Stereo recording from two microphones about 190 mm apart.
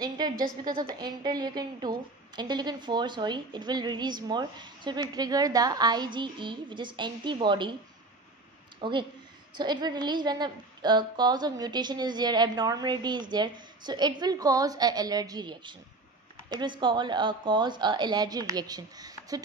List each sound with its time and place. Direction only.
0.7 s a woman's voice: 20° right (ahead or behind)
8.8 s a woman's voice: 25° right (ahead or behind)